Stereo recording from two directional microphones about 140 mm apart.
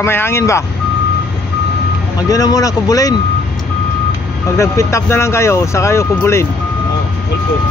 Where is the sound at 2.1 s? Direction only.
25° left (ahead or behind).